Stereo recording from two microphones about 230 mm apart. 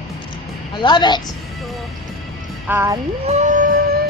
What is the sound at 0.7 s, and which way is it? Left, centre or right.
Speech, centre.